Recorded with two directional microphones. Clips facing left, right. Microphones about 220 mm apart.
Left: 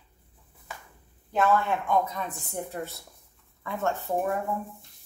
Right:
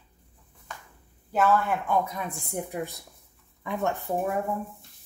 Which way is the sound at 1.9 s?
10° right (ahead or behind).